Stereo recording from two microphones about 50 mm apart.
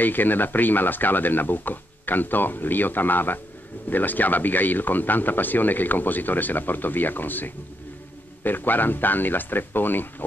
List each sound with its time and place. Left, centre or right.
0.0 s speech: left